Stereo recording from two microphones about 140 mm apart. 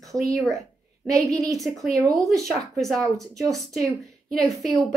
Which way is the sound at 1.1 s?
25° right (ahead or behind).